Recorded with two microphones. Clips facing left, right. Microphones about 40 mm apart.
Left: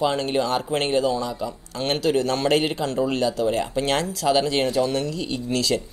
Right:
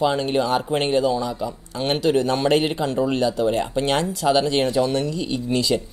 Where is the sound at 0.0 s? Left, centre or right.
Centre.